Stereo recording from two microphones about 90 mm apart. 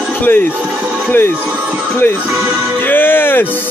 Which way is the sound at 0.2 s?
20° left (ahead or behind).